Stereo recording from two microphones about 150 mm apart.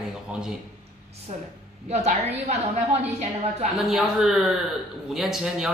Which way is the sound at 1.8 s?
50° right (ahead or behind).